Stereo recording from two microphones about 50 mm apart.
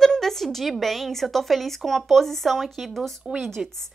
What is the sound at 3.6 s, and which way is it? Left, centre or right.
Speech, centre.